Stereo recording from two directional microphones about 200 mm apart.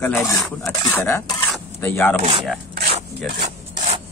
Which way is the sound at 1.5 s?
10° left (ahead or behind).